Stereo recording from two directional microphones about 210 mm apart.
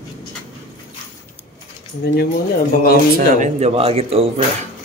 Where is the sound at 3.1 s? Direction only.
40° right (ahead or behind).